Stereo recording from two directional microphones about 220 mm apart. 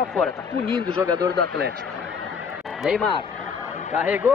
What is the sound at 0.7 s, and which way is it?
Speech, 20° right (ahead or behind).